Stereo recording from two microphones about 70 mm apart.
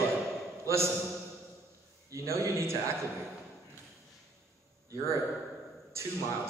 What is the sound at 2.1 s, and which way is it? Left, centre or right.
A man's voice, right.